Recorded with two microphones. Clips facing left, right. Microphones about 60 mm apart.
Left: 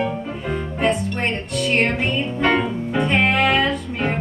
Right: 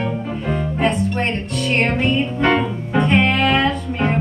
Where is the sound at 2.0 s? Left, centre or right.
Centre.